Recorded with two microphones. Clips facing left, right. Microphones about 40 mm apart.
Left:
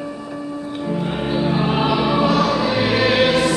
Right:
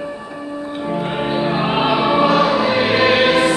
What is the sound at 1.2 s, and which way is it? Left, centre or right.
Music, right.